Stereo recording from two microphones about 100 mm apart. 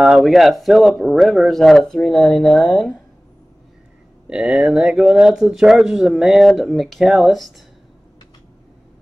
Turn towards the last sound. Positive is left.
turn(degrees=0)  # may be behind; listen again after turning